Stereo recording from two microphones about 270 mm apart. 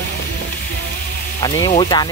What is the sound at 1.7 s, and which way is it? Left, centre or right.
Speech, centre.